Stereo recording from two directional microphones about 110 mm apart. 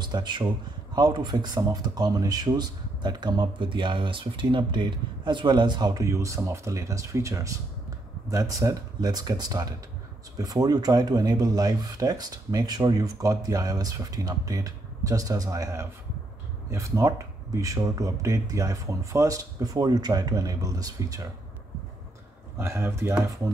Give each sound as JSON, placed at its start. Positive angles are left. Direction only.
{"t": 0.0, "sound": "speech", "side_deg": -40}
{"t": 22.6, "sound": "speech", "side_deg": -25}